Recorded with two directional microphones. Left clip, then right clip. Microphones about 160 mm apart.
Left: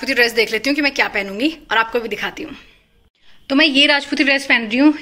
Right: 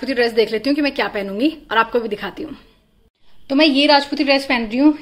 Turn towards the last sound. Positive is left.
turn(degrees=0)  # may be behind; listen again after turning